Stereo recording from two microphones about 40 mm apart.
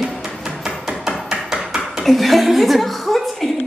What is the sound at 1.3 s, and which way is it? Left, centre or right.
Hammer, centre.